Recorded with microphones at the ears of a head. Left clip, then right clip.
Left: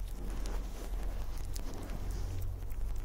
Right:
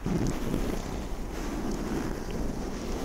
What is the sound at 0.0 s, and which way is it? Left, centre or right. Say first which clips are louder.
Boat: right 17 dB; right.